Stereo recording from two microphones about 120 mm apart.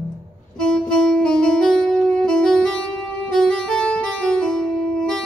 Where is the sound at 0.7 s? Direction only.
5° left (ahead or behind).